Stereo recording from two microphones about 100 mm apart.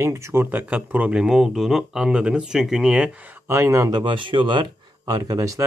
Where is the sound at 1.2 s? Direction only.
5° right (ahead or behind).